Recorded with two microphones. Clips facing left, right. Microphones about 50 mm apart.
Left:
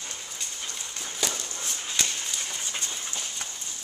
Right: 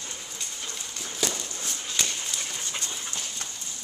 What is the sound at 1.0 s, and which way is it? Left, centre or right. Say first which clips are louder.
Walk: right 1 dB; centre.